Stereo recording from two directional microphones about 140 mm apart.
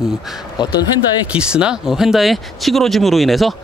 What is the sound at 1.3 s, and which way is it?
Speech, 5° right (ahead or behind).